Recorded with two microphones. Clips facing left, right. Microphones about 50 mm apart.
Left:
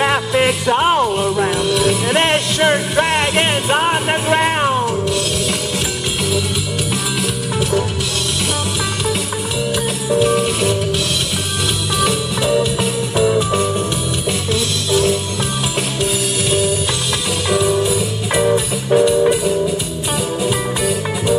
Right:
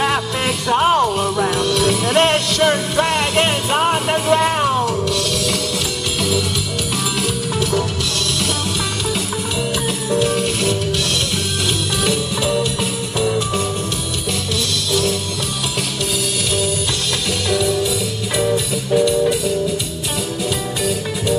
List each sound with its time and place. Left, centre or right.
0.0 s music: centre
10.0 s music: centre
12.0 s music: centre
17.5 s music: left
20.4 s music: centre